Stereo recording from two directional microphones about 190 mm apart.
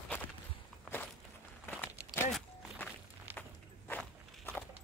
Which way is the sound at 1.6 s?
10° left (ahead or behind).